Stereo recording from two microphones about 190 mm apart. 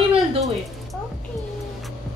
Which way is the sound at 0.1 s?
30° right (ahead or behind).